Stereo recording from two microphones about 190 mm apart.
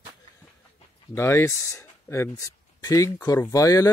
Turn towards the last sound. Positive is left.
turn(degrees=15)  # may be behind; listen again after turning